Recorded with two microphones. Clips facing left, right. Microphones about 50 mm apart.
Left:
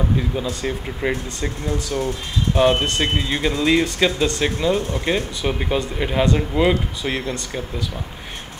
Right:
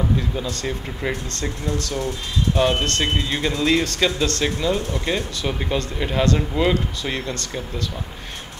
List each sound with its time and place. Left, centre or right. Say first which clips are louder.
0.4 s speech: left 2 dB; centre